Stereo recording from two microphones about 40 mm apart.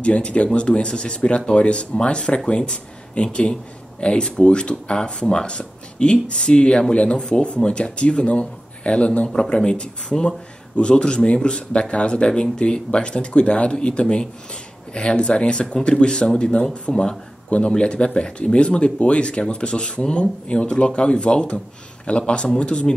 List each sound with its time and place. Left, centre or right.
0.0 s speech: left